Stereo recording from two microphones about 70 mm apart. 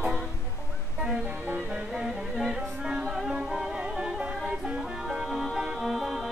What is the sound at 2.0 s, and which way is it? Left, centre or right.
Music, centre.